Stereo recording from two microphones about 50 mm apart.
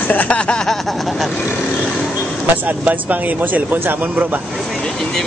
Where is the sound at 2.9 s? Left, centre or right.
Right.